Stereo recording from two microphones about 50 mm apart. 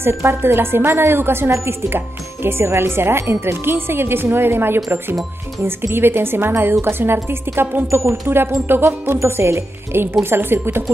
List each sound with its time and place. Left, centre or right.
0.0 s speech: right
9.2 s speech: right
10.3 s speech: right